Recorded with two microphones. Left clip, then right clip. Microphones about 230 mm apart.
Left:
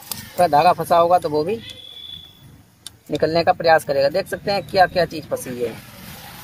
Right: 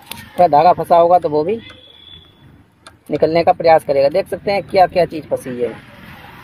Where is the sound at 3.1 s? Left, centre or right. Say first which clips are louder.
Right 4 dB; centre.